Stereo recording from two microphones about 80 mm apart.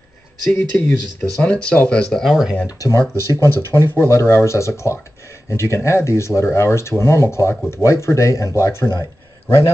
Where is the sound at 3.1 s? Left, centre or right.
Left.